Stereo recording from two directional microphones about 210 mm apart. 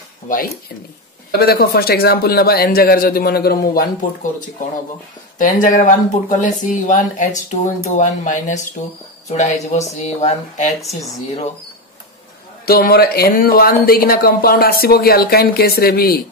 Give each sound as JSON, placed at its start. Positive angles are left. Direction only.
{"t": 1.4, "sound": "speech", "side_deg": 45}
{"t": 5.4, "sound": "speech", "side_deg": 35}
{"t": 10.8, "sound": "speech", "side_deg": 0}
{"t": 12.6, "sound": "speech", "side_deg": 45}